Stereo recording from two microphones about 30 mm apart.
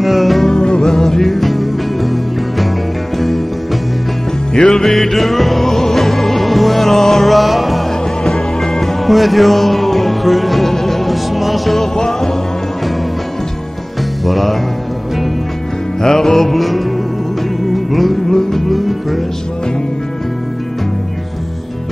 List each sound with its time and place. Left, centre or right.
0.0 s music: centre
0.5 s music: left; by 2.1 s centre
3.2 s music: centre
4.6 s music: left; by 7.8 s centre
8.3 s music: centre
9.0 s music: centre
14.2 s music: centre
16.0 s music: centre
18.7 s music: centre